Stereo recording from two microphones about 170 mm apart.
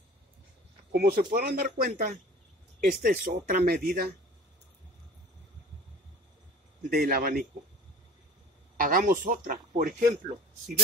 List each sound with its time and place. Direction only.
0.9 s speech: 65° right (ahead or behind)
6.9 s speech: 60° right (ahead or behind)
8.7 s a man's voice: 55° right (ahead or behind)